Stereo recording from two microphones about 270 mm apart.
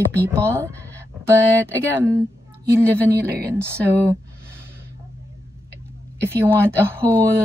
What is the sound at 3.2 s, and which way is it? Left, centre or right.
Speech, centre.